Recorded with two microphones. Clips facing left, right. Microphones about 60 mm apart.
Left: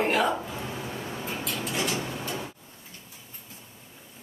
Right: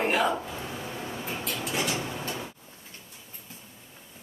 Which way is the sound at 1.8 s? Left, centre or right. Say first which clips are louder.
Even; centre.